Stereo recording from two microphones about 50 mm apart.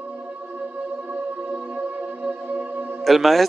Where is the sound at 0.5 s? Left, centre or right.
Right.